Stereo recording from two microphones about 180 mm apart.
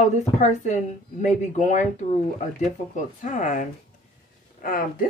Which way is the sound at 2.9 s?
45° left (ahead or behind).